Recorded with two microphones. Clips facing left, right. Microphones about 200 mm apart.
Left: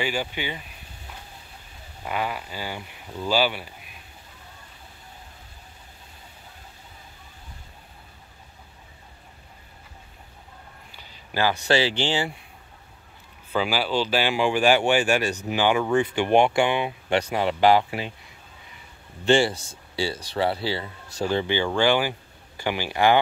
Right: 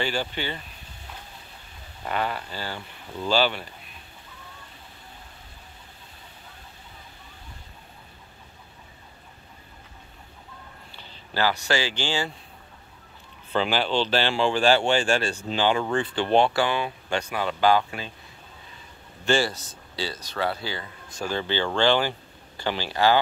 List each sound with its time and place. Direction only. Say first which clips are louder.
0.0 s speech: even; 10° left (ahead or behind)
2.0 s speech: even; 10° left (ahead or behind)
11.0 s a sound: left 1 dB; 10° left (ahead or behind)
11.6 s speech: left 4 dB; 25° left (ahead or behind)
13.5 s speech: even; 10° left (ahead or behind); by 18.1 s 25° left (ahead or behind)
19.2 s speech: left 4 dB; 20° left (ahead or behind)